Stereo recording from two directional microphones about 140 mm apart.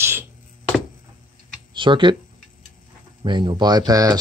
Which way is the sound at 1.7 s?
35° right (ahead or behind).